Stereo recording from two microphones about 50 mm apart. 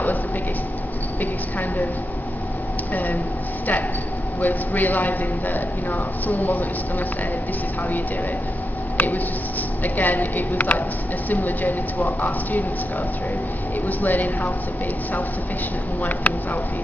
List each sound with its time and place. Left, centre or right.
2.9 s speech: left
4.4 s a man's voice: left
8.9 s a man's voice: left
13.8 s a man's voice: left
16.0 s a man's voice: left